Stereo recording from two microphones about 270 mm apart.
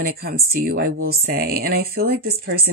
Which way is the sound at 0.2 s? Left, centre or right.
Right.